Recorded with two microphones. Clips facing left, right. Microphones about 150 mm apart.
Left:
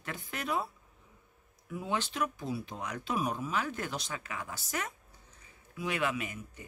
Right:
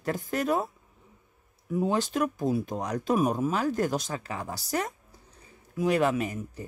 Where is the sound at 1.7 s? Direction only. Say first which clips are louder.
Right 8 dB; 40° right (ahead or behind).